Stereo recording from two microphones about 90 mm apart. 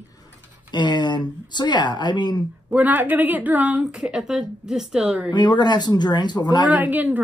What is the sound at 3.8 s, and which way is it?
Speech, 10° right (ahead or behind).